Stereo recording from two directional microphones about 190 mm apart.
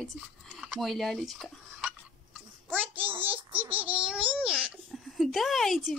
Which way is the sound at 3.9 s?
5° right (ahead or behind).